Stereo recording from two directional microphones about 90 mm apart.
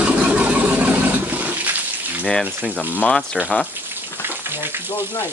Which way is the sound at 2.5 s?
20° right (ahead or behind).